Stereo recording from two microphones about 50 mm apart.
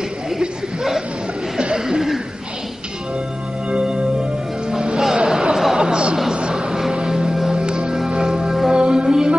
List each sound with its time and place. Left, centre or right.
1.6 s chuckle: centre
3.7 s music: centre